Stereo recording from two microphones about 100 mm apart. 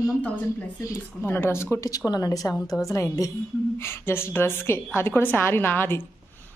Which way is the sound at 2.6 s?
5° left (ahead or behind).